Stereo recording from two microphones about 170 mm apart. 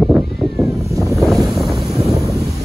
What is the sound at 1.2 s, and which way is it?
Boat, centre (ahead or behind).